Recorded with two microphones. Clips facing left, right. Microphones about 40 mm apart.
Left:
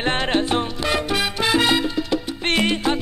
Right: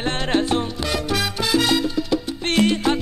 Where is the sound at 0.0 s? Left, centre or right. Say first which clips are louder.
Left 1 dB; left.